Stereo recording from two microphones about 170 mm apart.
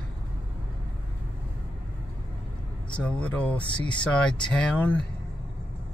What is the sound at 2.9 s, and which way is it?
Speech, 5° left (ahead or behind).